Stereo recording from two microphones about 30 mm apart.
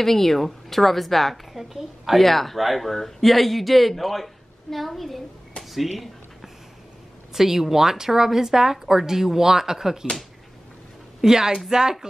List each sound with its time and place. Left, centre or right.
0.0 s speech: centre
2.1 s speech: centre
5.6 s a sound: centre
7.3 s speech: centre
11.2 s speech: centre